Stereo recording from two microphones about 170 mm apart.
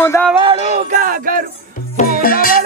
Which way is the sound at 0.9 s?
55° right (ahead or behind).